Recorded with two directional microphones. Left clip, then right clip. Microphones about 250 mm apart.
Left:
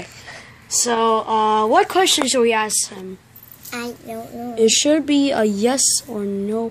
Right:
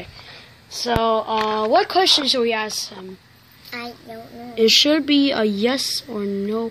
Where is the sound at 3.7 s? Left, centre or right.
Left.